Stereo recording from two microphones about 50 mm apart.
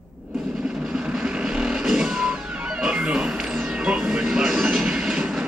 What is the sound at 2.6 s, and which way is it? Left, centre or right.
Music, centre.